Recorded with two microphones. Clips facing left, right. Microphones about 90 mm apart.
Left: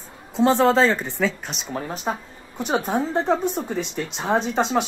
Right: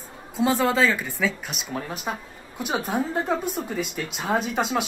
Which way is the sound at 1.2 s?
5° right (ahead or behind).